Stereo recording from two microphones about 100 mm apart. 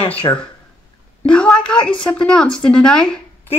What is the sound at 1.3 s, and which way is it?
Speech, 10° left (ahead or behind).